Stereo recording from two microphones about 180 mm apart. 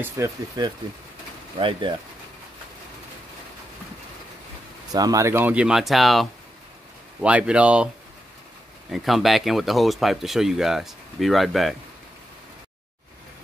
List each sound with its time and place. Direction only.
0.0 s speech: 15° right (ahead or behind)
1.6 s speech: 30° right (ahead or behind)
4.9 s speech: 20° right (ahead or behind)
8.9 s speech: centre (ahead or behind)